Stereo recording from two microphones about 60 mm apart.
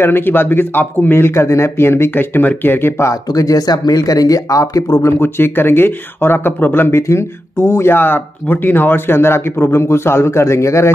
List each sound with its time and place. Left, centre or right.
0.0 s speech: left
3.0 s speech: left
5.2 s speech: left